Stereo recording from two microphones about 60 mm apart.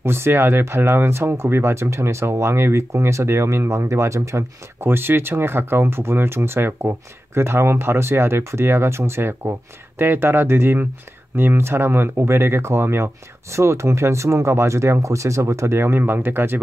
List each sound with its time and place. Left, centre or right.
0.0 s speech: right